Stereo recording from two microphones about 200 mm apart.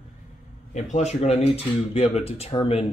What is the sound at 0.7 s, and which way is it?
Speech, 35° left (ahead or behind).